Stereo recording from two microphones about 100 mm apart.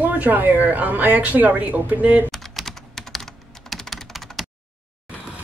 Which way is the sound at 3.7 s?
Centre (ahead or behind).